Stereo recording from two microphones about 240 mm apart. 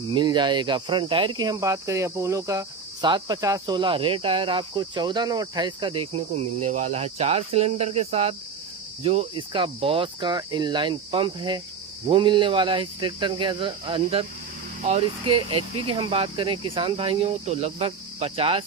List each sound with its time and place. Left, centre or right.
0.1 s cricket: centre